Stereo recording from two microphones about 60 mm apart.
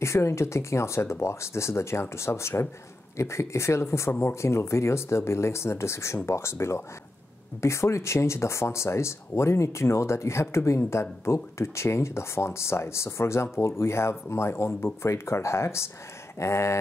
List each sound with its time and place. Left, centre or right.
0.0 s speech: left